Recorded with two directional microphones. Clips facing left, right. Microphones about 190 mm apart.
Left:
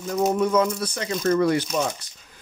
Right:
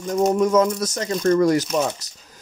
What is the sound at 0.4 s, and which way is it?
Speech, 45° right (ahead or behind).